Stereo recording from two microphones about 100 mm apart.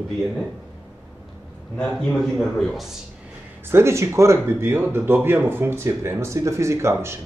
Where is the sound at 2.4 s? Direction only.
5° left (ahead or behind).